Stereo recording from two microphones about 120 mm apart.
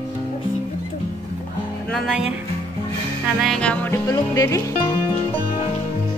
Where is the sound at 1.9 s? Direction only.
5° left (ahead or behind).